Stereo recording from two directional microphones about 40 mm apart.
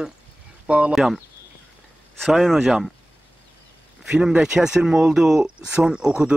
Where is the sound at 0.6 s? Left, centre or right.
Right.